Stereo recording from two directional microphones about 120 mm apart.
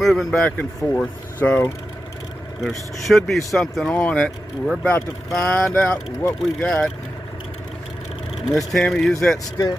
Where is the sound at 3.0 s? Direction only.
Centre (ahead or behind).